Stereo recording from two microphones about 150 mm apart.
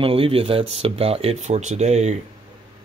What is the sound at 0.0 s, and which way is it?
Speech, 40° right (ahead or behind).